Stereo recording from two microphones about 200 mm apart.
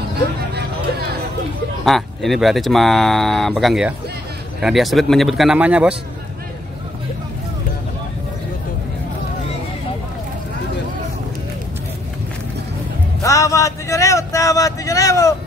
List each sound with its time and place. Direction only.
1.9 s speech: centre (ahead or behind)
13.2 s vehicle: 15° left (ahead or behind)